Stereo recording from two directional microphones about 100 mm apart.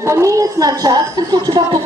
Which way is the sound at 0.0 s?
30° right (ahead or behind).